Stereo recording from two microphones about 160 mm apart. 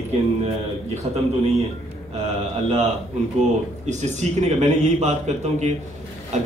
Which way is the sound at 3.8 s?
45° right (ahead or behind).